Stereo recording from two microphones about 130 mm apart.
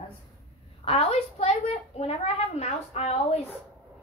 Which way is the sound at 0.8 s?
45° left (ahead or behind).